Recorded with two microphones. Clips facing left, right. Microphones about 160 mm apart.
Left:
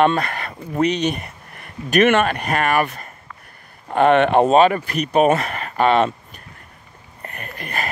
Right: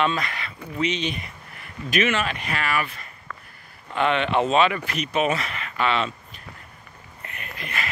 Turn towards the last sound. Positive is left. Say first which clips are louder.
# left 5 dB
turn(degrees=45)  # may be behind; listen again after turning